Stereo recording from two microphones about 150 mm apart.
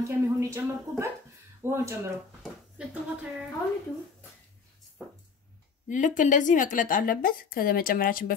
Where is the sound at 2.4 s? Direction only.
5° right (ahead or behind).